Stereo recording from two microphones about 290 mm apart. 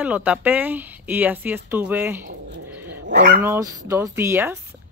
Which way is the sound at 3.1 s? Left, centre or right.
Right.